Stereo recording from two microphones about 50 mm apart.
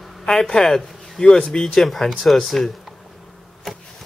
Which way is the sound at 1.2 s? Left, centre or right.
Centre.